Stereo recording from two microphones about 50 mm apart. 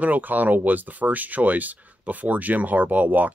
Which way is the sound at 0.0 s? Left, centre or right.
Right.